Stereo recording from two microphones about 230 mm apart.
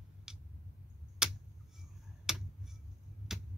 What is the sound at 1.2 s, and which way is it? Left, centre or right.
Tick-tock, centre.